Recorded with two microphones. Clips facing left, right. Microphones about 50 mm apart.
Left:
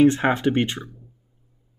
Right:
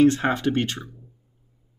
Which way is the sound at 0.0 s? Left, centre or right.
Centre.